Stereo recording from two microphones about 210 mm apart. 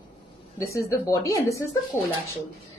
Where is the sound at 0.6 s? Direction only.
15° left (ahead or behind).